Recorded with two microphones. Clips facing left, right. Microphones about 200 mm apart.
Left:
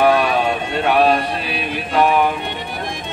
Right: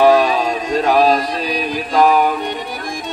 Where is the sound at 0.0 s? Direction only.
35° right (ahead or behind).